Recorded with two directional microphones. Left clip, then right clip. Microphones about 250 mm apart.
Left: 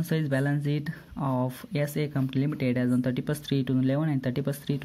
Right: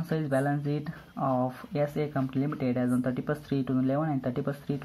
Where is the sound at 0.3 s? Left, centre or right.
Left.